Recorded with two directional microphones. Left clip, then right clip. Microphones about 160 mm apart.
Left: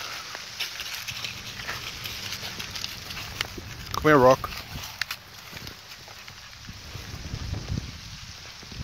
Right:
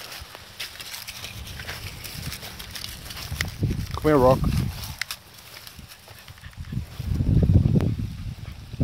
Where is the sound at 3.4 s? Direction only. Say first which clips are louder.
Right 2 dB; 45° right (ahead or behind).